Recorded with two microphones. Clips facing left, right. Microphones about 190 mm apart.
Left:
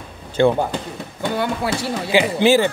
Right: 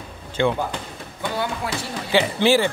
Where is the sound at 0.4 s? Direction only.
40° left (ahead or behind).